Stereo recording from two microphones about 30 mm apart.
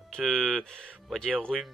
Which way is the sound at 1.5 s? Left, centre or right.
Centre.